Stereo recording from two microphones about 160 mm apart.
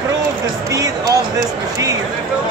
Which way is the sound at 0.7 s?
20° right (ahead or behind).